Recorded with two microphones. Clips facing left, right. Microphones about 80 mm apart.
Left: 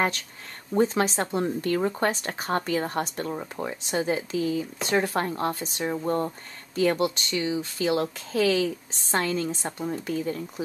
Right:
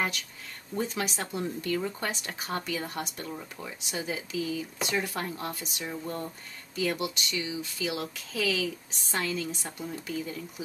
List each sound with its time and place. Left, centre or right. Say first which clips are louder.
0.7 s speech: left 9 dB; left